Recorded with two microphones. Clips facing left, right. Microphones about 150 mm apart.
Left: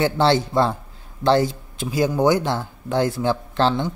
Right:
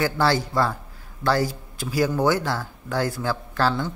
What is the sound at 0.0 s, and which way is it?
Speech, 25° left (ahead or behind).